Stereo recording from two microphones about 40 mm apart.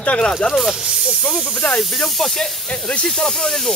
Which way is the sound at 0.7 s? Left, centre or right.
Centre.